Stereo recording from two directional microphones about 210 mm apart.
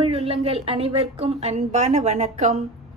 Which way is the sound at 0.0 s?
30° right (ahead or behind).